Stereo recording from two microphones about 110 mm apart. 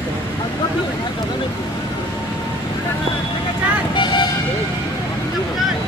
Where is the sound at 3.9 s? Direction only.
45° left (ahead or behind).